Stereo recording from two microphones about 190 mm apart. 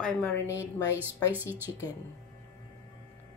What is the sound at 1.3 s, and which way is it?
Speech, 10° right (ahead or behind).